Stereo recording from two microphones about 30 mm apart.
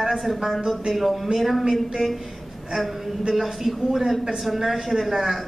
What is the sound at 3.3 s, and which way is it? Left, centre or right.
A woman's voice, centre.